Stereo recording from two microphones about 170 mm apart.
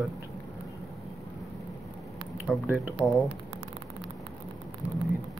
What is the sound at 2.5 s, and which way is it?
Speech, 5° right (ahead or behind).